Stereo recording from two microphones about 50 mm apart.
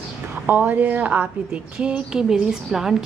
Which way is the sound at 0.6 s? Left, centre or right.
Right.